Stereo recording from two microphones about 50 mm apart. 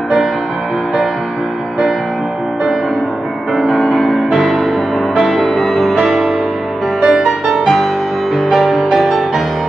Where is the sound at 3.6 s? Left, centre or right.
Centre.